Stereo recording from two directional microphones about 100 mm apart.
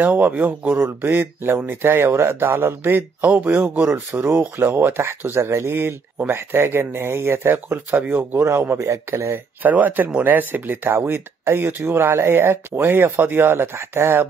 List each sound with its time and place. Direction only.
0.0 s speech: 15° right (ahead or behind)